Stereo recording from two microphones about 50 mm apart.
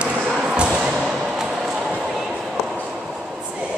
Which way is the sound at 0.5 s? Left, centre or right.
Centre.